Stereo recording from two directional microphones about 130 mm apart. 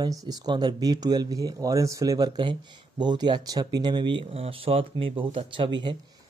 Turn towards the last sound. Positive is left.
turn(degrees=-40)  # may be behind; listen again after turning